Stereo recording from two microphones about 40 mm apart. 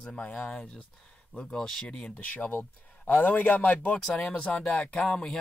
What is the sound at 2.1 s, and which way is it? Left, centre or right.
Speech, left.